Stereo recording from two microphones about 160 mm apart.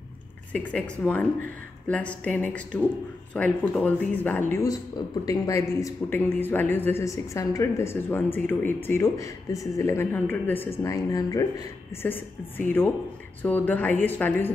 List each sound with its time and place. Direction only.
0.5 s speech: 10° left (ahead or behind)